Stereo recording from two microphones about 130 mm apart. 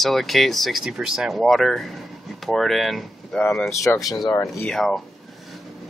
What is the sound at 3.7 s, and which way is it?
Speech, 25° left (ahead or behind).